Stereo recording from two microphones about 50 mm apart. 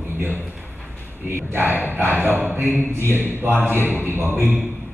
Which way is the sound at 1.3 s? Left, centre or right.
Right.